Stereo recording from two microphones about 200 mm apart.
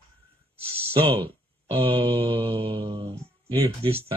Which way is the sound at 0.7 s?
30° right (ahead or behind).